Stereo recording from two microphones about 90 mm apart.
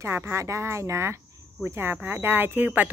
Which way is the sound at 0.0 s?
30° right (ahead or behind).